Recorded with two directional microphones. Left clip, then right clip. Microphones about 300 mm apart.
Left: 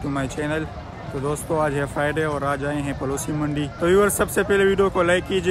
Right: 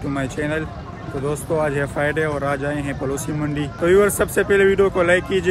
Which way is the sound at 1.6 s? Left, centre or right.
Centre.